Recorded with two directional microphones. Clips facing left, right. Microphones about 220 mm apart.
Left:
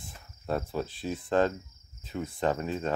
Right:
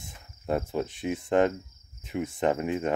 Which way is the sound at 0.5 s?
20° right (ahead or behind).